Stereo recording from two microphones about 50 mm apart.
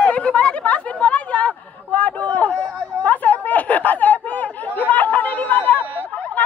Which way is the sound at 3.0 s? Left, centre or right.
Left.